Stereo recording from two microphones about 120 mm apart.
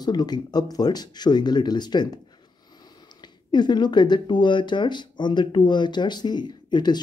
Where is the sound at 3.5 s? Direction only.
40° left (ahead or behind).